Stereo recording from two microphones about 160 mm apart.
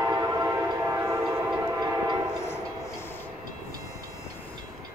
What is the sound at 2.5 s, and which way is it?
Train, 15° left (ahead or behind).